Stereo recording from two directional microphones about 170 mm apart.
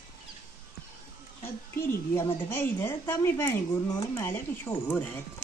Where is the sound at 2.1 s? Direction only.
15° left (ahead or behind).